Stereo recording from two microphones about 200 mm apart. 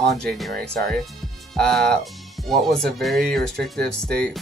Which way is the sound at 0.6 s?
50° right (ahead or behind).